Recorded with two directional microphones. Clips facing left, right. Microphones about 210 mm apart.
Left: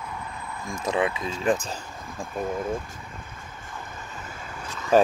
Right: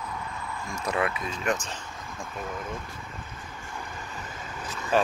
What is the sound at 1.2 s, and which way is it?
Speech, 30° left (ahead or behind).